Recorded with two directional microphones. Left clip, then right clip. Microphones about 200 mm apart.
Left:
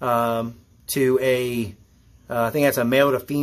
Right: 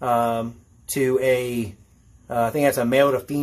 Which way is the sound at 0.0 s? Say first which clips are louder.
Even; 20° left (ahead or behind).